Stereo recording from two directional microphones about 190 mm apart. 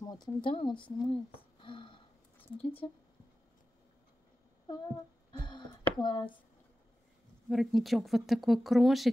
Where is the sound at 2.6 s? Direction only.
30° left (ahead or behind).